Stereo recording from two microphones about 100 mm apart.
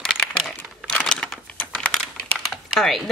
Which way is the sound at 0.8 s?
10° left (ahead or behind).